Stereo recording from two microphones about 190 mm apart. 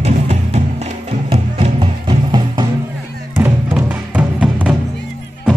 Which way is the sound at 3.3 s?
10° right (ahead or behind).